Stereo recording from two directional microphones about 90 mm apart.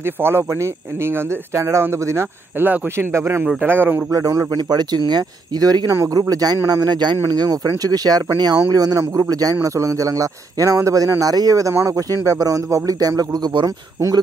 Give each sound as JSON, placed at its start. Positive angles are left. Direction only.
{"t": 0.0, "sound": "speech", "side_deg": -25}
{"t": 2.6, "sound": "speech", "side_deg": -20}
{"t": 4.1, "sound": "speech", "side_deg": -40}
{"t": 4.6, "sound": "speech", "side_deg": -50}
{"t": 5.9, "sound": "speech", "side_deg": -35}
{"t": 6.1, "sound": "speech", "side_deg": -45}